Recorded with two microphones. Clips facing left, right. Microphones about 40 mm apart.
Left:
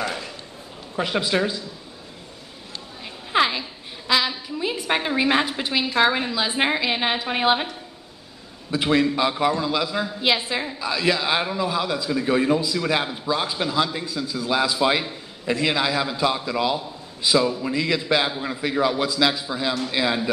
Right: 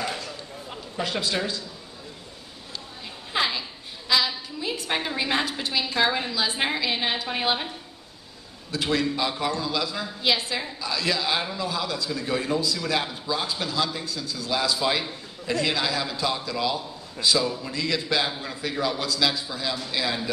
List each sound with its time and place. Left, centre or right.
1.0 s a man's voice: left
3.3 s a sound: centre
4.1 s a man's voice: left
8.7 s a man's voice: left